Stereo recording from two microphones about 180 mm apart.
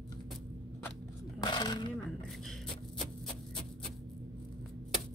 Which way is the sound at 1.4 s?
25° left (ahead or behind).